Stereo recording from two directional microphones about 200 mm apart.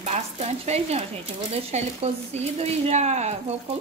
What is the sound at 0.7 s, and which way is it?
Speech, 30° right (ahead or behind).